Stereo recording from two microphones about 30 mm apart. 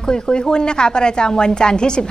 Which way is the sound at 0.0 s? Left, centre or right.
Left.